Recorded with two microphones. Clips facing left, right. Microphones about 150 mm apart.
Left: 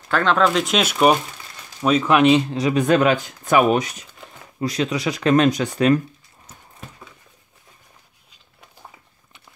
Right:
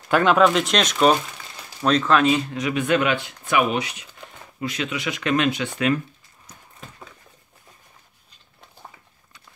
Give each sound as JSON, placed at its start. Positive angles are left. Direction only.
{"t": 0.1, "sound": "speech", "side_deg": -10}
{"t": 2.5, "sound": "speech", "side_deg": 35}